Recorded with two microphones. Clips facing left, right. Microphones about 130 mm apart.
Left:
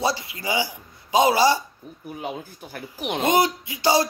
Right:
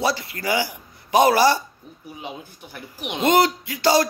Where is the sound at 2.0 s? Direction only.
50° left (ahead or behind).